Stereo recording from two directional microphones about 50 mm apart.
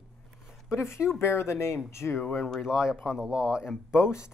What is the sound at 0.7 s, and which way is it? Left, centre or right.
Speech, left.